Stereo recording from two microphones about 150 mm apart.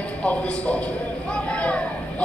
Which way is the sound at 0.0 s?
10° left (ahead or behind).